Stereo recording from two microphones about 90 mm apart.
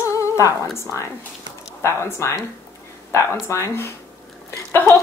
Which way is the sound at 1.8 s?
30° left (ahead or behind).